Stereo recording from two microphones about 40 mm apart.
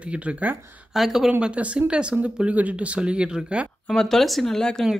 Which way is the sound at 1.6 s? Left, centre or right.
Right.